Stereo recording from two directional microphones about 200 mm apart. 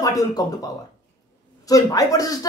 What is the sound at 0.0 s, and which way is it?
Speech, 20° left (ahead or behind).